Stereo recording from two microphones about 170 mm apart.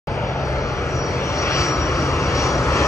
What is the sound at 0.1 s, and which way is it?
Vehicle, 15° left (ahead or behind).